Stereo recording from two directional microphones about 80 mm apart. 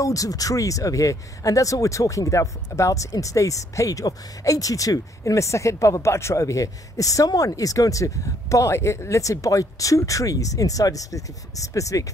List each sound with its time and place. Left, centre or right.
0.0 s speech: left